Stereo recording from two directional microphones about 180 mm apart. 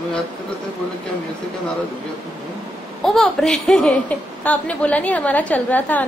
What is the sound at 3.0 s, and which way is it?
A woman's voice, 5° left (ahead or behind).